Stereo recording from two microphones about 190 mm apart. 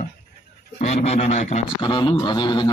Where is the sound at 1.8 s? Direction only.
25° left (ahead or behind).